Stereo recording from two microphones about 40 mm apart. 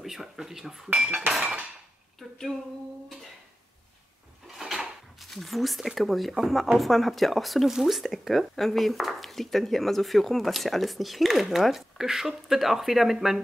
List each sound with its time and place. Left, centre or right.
0.0 s speech: centre
0.9 s speech: right
4.5 s a sound: centre
5.3 s speech: centre